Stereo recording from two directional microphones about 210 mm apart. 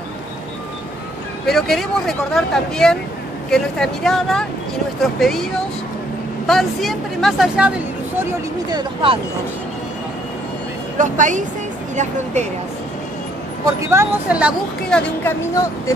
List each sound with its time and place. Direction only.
1.4 s speech: centre (ahead or behind)
8.2 s speech: 20° right (ahead or behind)
11.0 s speech: 35° right (ahead or behind)
13.8 s speech: 10° right (ahead or behind)
15.0 s speech: 10° left (ahead or behind)